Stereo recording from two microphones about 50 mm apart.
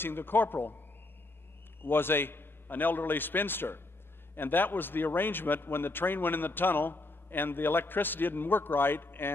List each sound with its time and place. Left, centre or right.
0.0 s a man's voice: left
1.8 s a man's voice: left